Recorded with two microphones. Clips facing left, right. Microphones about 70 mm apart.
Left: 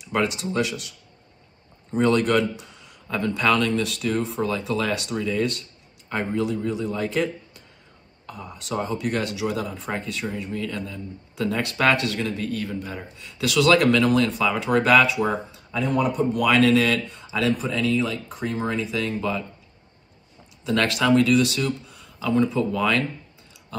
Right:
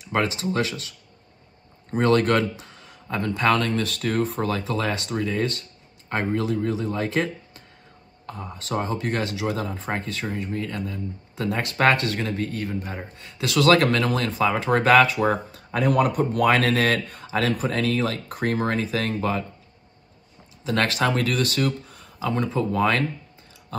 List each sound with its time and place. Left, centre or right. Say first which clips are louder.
0.1 s speech: even; right
1.9 s speech: even; right
4.6 s speech: left 1 dB; right
8.7 s speech: even; right
20.7 s speech: left 1 dB; right
21.1 s speech: left 6 dB; right